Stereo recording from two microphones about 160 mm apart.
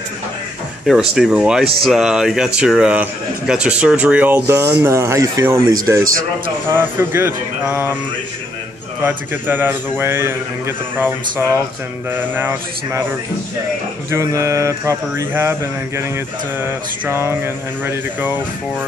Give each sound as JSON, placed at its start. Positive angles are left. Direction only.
{"t": 0.8, "sound": "a man's voice", "side_deg": -5}
{"t": 9.0, "sound": "a man's voice", "side_deg": -10}
{"t": 14.1, "sound": "speech", "side_deg": -20}
{"t": 16.6, "sound": "a man's voice", "side_deg": -15}